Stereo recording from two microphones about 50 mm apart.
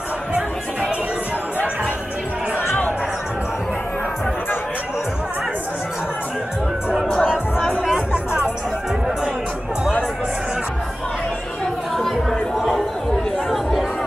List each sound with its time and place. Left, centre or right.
6.9 s music: centre
11.9 s chatter: centre
13.5 s chatter: centre